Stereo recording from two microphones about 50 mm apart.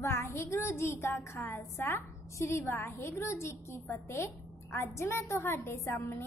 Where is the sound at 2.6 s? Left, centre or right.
Left.